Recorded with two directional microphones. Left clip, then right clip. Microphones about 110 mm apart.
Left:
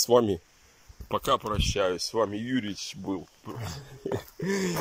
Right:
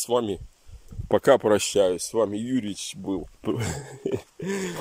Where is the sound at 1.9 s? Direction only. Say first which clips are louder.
Right 3 dB; 30° right (ahead or behind).